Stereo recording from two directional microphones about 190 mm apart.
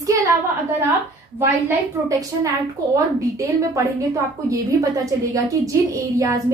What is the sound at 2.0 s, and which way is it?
A child's voice, 15° right (ahead or behind).